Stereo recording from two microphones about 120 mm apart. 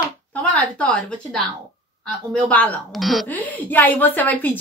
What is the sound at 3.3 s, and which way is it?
Speech, 15° left (ahead or behind).